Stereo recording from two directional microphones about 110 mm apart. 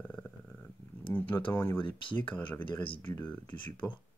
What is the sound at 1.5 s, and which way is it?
Speech, 20° left (ahead or behind).